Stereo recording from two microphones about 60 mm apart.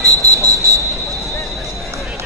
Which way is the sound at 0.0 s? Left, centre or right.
Right.